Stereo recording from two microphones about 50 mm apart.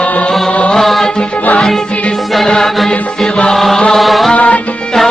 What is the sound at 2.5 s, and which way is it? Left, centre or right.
Music, centre.